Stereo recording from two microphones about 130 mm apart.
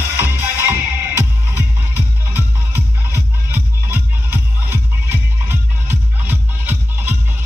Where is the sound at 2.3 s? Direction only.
15° right (ahead or behind).